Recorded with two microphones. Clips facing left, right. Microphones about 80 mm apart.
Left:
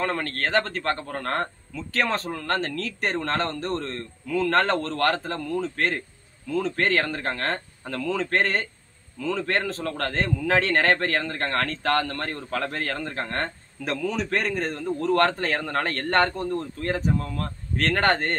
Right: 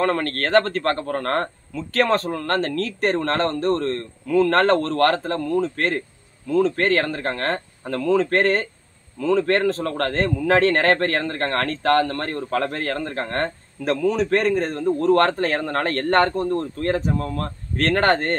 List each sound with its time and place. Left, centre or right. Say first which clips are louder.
0.0 s a man's voice: right 5 dB; right